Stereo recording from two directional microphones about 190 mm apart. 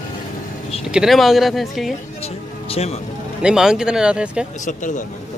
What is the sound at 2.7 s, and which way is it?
Speech, 30° left (ahead or behind).